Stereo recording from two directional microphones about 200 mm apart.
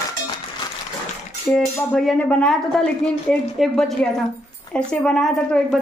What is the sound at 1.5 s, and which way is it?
A man's voice, 5° left (ahead or behind).